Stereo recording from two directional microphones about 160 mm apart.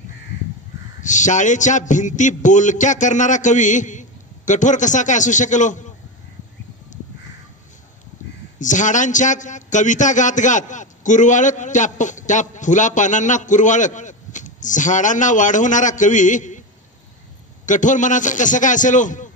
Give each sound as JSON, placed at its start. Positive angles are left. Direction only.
{"t": 1.0, "sound": "a man's voice", "side_deg": 50}
{"t": 8.5, "sound": "a man's voice", "side_deg": 50}
{"t": 17.6, "sound": "a man's voice", "side_deg": 50}